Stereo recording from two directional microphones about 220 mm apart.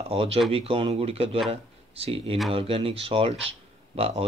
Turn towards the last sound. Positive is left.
turn(degrees=-25)  # may be behind; listen again after turning